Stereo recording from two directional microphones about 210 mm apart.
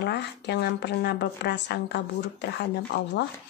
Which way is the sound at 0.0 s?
55° left (ahead or behind).